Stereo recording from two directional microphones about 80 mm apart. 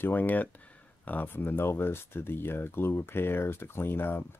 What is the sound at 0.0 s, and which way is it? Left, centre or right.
Speech, left.